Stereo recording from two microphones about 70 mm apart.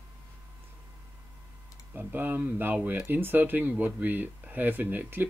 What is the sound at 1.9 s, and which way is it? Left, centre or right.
Speech, right.